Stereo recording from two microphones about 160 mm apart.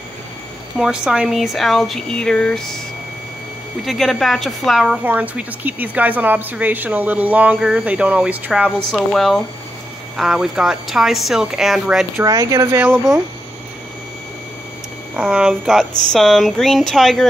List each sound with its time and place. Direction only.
0.7 s a woman's voice: 5° right (ahead or behind)
3.8 s speech: centre (ahead or behind)
8.6 s a woman's voice: 5° left (ahead or behind)
12.2 s speech: 20° right (ahead or behind)
15.1 s a woman's voice: 5° right (ahead or behind)